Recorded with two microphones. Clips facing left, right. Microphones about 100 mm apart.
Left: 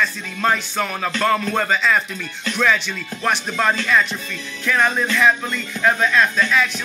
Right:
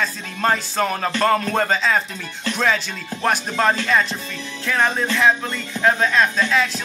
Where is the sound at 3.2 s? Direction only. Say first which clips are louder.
Right 1 dB; 35° right (ahead or behind).